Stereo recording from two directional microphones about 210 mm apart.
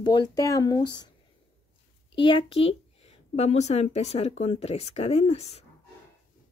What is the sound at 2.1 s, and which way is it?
Speech, 25° left (ahead or behind).